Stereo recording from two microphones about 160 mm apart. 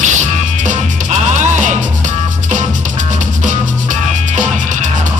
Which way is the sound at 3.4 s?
50° right (ahead or behind).